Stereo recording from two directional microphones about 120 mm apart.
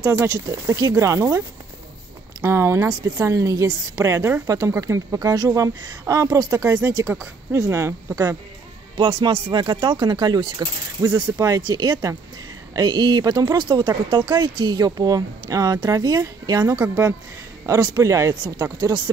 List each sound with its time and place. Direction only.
0.0 s a woman's voice: 25° right (ahead or behind)
2.4 s a woman's voice: 20° right (ahead or behind)
2.9 s a woman's voice: 30° right (ahead or behind)
8.9 s a woman's voice: 45° right (ahead or behind)